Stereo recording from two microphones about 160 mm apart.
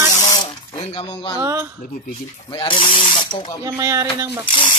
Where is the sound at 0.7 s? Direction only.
35° left (ahead or behind).